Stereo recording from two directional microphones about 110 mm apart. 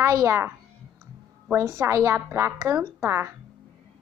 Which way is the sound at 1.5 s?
30° right (ahead or behind).